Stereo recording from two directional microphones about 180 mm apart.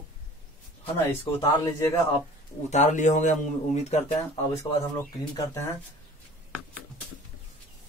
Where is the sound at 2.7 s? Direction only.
40° left (ahead or behind).